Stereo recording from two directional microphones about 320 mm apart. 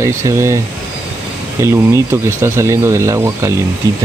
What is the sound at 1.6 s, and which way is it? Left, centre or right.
Speech, centre.